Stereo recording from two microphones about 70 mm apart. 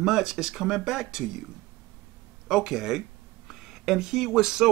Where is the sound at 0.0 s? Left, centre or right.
Centre.